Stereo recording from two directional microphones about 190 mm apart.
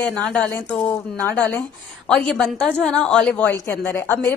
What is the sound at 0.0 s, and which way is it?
A woman's voice, 5° left (ahead or behind).